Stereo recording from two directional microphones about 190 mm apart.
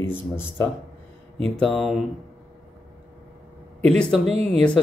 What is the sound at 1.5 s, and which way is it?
Speech, centre (ahead or behind).